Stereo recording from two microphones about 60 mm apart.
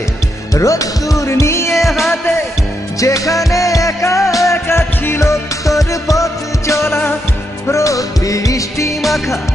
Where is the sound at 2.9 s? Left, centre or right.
Left.